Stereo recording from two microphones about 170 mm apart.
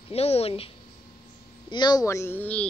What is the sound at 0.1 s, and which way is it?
Speech, 35° left (ahead or behind).